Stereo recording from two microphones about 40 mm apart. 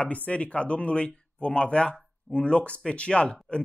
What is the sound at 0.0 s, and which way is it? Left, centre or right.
Speech, left.